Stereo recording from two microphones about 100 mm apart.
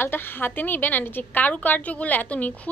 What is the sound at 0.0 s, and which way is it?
A woman's voice, 20° left (ahead or behind).